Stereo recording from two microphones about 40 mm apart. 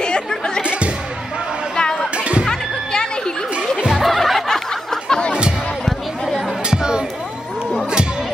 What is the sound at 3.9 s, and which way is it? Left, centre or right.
Music, centre.